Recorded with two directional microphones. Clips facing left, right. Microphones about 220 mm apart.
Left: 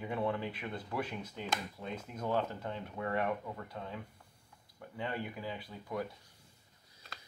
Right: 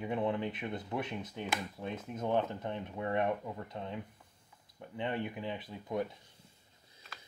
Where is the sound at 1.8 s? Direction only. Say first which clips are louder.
Right 2 dB; 5° right (ahead or behind).